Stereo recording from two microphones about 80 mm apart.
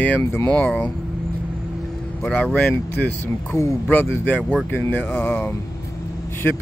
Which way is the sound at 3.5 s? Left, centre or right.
Left.